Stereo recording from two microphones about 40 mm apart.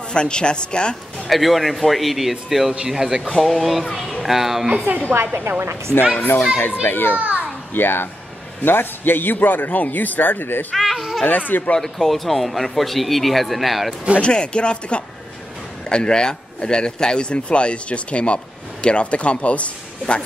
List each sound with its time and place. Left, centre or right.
0.1 s speech: left
1.3 s speech: centre
3.3 s speech: centre
5.1 s a woman's voice: right
6.1 s a man's voice: left
7.2 s children playing: right
7.7 s a child's voice: left
10.8 s baby cry: centre
11.2 s a man's voice: left
11.8 s speech: centre
14.2 s a man's voice: left